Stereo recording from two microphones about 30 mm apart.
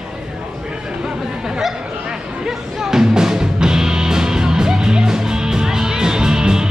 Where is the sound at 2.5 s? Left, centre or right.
Centre.